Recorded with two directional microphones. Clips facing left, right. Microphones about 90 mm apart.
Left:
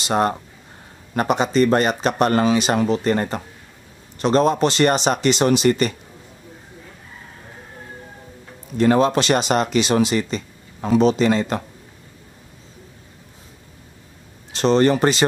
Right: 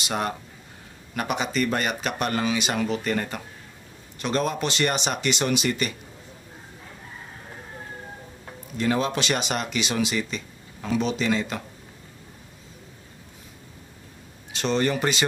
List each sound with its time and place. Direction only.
0.0 s speech: 35° left (ahead or behind)
8.7 s speech: 45° left (ahead or behind)
14.5 s speech: 35° left (ahead or behind)